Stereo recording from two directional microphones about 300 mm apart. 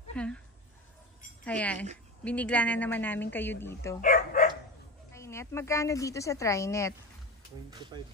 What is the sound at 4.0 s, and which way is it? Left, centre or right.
Dog, left.